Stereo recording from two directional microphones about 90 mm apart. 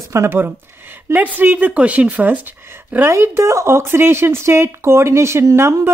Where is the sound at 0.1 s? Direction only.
30° right (ahead or behind).